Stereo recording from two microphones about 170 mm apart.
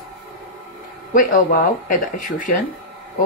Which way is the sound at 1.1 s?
50° left (ahead or behind).